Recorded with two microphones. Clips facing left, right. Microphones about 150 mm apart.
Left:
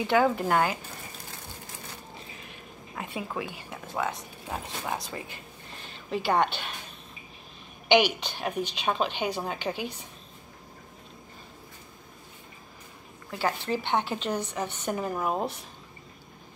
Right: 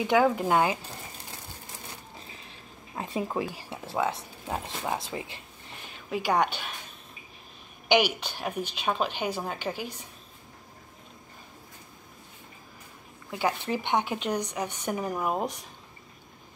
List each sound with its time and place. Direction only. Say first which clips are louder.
0.0 s a woman's voice: right 1 dB; 15° right (ahead or behind)
3.0 s speech: right 4 dB; 35° right (ahead or behind)
5.9 s a woman's voice: even; 10° right (ahead or behind)
7.9 s a woman's voice: left 2 dB; 10° right (ahead or behind)
13.4 s a woman's voice: even; 15° right (ahead or behind)